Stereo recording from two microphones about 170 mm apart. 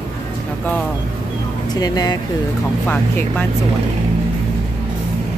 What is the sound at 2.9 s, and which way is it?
Speech, 10° left (ahead or behind).